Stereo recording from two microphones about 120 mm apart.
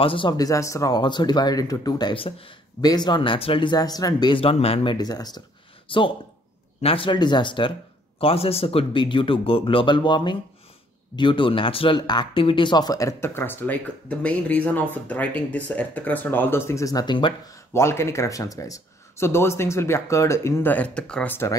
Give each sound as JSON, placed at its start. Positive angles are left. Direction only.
{"t": 0.0, "sound": "speech", "side_deg": 45}
{"t": 5.9, "sound": "speech", "side_deg": 45}
{"t": 8.2, "sound": "speech", "side_deg": 55}
{"t": 17.7, "sound": "speech", "side_deg": 20}